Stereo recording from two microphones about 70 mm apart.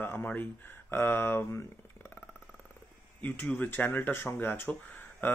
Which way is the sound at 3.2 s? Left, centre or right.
Left.